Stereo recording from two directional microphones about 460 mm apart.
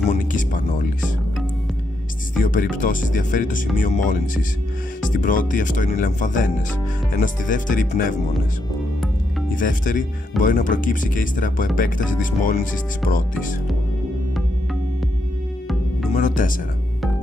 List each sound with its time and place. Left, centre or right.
0.1 s music: centre
2.4 s speech: centre
9.6 s speech: centre
16.1 s speech: centre